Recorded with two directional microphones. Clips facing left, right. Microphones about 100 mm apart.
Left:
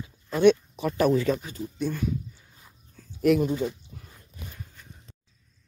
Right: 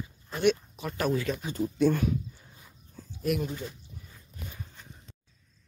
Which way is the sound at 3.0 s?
30° right (ahead or behind).